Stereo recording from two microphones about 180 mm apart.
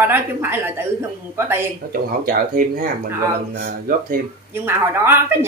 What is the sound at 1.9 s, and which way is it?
Speech, 50° right (ahead or behind).